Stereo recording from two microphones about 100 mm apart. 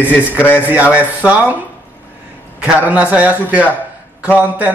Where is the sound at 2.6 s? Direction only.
15° right (ahead or behind).